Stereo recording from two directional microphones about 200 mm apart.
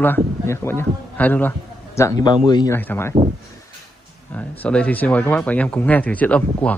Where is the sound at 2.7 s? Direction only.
10° left (ahead or behind).